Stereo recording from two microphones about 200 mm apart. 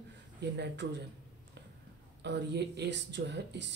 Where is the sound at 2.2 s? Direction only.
60° right (ahead or behind).